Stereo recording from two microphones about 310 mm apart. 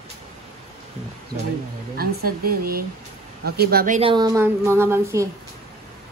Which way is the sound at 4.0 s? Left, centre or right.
Centre.